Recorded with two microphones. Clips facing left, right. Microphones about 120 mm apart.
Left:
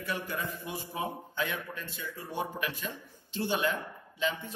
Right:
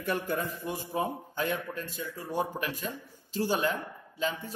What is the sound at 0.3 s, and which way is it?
A man's voice, 50° right (ahead or behind).